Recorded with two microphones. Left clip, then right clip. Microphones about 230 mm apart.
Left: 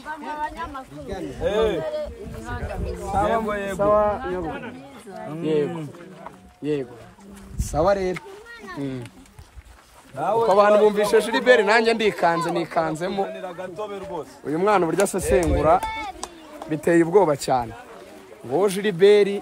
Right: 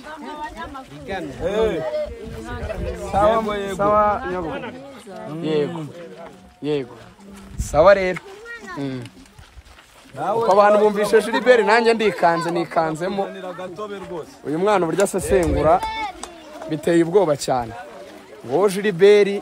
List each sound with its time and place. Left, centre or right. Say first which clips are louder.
1.4 s speech: right 1 dB; left
1.9 s speech: right 3 dB; centre
3.1 s a man's voice: right 4 dB; centre
10.5 s a man's voice: right 2 dB; centre
14.4 s a man's voice: right 1 dB; centre
16.8 s speech: even; centre
17.4 s a man's voice: right 1 dB; centre